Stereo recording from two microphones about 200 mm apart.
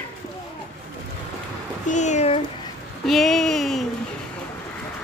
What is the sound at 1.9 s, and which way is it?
Speech, 35° left (ahead or behind).